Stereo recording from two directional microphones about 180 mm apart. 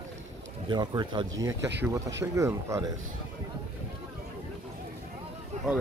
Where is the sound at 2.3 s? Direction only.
15° right (ahead or behind).